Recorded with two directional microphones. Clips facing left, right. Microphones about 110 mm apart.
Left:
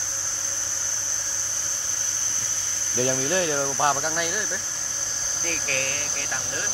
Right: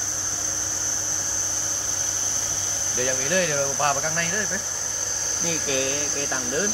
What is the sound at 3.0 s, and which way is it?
Speech, 30° left (ahead or behind).